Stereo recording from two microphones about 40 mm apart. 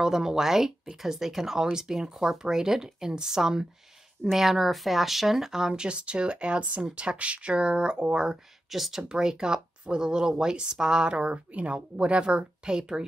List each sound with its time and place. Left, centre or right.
0.0 s speech: centre
8.6 s speech: centre
9.1 s speech: centre